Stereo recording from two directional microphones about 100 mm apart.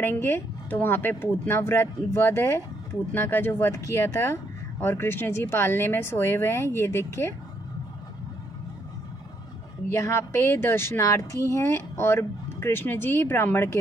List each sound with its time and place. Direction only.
0.0 s speech: 25° left (ahead or behind)
9.8 s speech: 30° left (ahead or behind)